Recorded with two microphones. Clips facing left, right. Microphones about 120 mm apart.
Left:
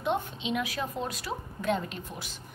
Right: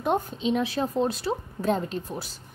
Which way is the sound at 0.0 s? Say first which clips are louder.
Right 5 dB; 40° right (ahead or behind).